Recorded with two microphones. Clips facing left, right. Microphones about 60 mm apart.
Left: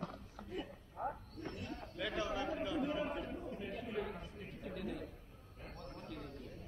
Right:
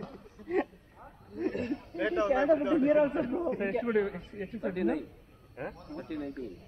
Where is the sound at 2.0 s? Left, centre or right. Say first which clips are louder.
Right 12 dB; right.